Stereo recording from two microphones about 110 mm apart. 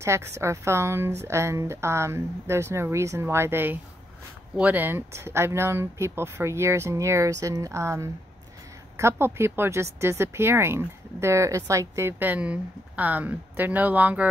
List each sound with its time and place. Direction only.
0.0 s speech: 25° right (ahead or behind)